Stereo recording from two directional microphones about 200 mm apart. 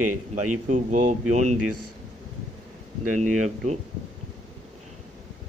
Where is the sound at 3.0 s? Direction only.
40° right (ahead or behind).